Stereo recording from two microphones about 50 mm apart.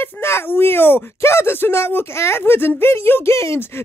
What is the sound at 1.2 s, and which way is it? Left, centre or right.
Speech, left.